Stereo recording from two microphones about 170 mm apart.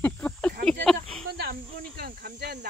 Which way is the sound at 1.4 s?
65° right (ahead or behind).